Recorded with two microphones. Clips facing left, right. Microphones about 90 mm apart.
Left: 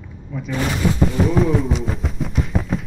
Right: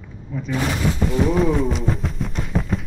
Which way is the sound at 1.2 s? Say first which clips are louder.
Right 1 dB; centre (ahead or behind).